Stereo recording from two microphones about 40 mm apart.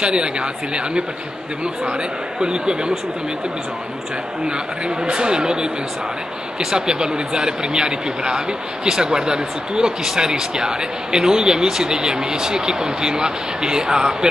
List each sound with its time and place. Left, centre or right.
0.0 s speech: right
2.4 s speech: right
4.5 s speech: right